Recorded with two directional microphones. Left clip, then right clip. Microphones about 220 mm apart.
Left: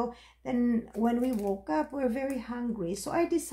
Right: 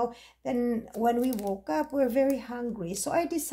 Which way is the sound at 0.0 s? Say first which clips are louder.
Right 4 dB; 50° right (ahead or behind).